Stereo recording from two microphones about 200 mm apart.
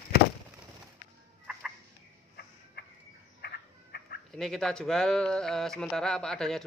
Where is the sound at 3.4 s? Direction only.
50° left (ahead or behind).